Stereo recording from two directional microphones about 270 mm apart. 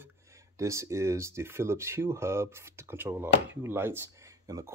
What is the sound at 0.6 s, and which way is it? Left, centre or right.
Speech, centre.